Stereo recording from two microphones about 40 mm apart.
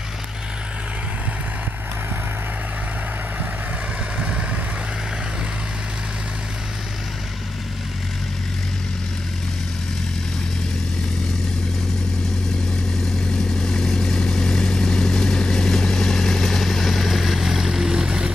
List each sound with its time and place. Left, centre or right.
4.2 s vehicle: right
13.6 s vehicle: centre